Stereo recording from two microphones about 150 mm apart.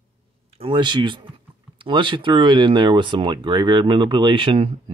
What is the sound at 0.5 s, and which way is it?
Speech, 35° right (ahead or behind).